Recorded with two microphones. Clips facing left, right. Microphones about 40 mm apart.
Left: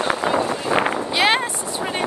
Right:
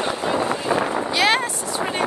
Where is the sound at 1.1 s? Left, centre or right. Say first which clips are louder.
Even; left.